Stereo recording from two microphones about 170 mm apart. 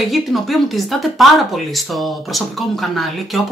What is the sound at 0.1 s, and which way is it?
Speech, centre (ahead or behind).